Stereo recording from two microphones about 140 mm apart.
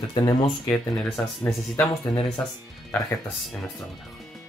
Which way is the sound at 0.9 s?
5° left (ahead or behind).